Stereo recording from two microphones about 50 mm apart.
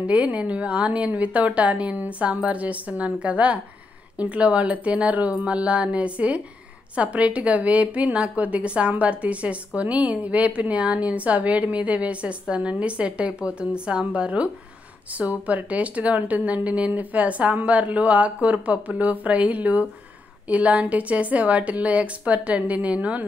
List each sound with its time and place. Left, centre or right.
0.0 s a woman's voice: right